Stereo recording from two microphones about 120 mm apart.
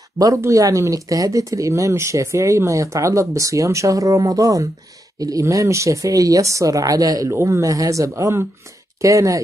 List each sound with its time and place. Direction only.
0.2 s speech: 25° right (ahead or behind)